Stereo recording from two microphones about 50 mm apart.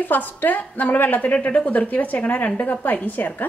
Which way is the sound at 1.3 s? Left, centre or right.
Left.